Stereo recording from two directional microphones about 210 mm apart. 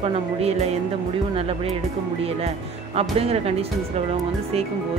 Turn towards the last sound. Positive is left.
turn(degrees=-30)  # may be behind; listen again after turning